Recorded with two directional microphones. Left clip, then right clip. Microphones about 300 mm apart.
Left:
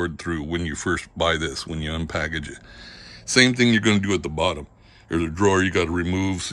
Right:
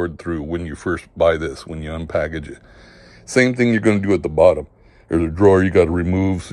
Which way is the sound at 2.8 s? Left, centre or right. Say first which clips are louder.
Left 3 dB; right.